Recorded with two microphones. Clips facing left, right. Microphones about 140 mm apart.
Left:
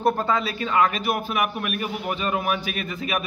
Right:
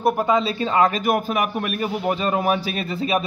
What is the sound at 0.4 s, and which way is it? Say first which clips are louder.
A man's voice: right 3 dB; 25° right (ahead or behind).